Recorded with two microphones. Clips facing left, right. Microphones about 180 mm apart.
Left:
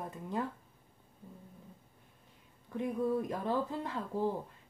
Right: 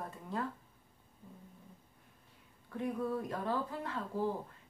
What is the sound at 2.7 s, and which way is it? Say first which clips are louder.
Speech: left 3 dB; 20° left (ahead or behind).